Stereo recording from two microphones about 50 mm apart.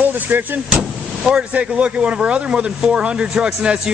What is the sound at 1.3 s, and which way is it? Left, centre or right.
Speech, right.